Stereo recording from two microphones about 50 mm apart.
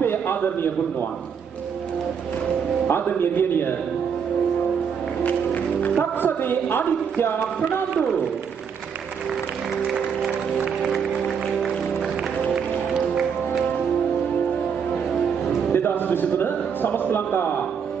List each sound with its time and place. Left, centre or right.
0.0 s a sound: left
2.9 s a man's voice: left
5.2 s speech: left
15.7 s a man's voice: left